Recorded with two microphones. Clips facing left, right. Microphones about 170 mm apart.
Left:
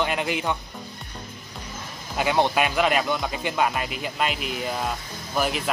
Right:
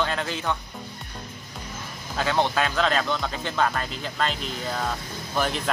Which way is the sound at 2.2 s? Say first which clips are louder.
Left 2 dB; 15° left (ahead or behind).